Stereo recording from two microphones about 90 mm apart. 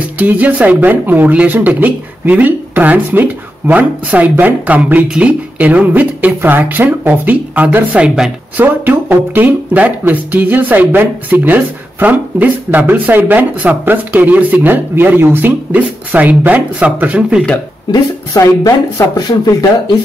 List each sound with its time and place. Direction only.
0.2 s speech: 15° right (ahead or behind)
8.8 s music: 20° right (ahead or behind)
17.9 s speech: 45° left (ahead or behind)